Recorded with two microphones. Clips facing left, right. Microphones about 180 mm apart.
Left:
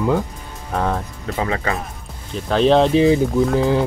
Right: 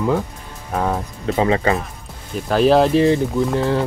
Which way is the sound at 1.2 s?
25° right (ahead or behind).